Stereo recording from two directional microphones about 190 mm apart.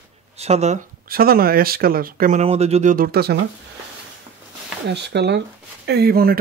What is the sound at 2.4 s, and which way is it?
Speech, 35° right (ahead or behind).